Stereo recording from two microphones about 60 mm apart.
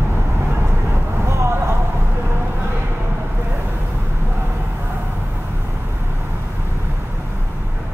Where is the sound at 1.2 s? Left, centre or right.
Right.